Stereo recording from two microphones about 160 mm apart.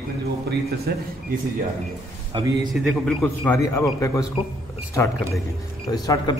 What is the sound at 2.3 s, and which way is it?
Speech, 30° right (ahead or behind).